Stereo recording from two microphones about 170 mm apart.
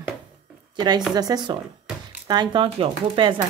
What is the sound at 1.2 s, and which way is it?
Speech, 25° right (ahead or behind).